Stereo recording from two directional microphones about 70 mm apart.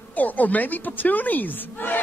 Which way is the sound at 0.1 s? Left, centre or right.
Left.